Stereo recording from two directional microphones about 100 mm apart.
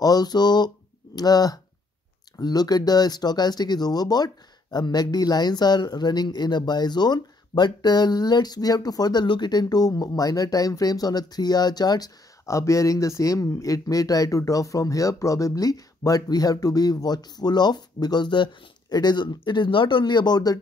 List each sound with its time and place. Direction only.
0.0 s speech: 40° left (ahead or behind)
12.4 s speech: 30° left (ahead or behind)